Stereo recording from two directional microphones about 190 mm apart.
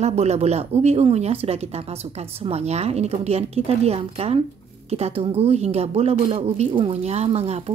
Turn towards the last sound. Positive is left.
turn(degrees=-35)  # may be behind; listen again after turning